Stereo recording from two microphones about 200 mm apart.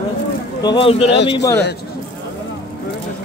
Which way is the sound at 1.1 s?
60° left (ahead or behind).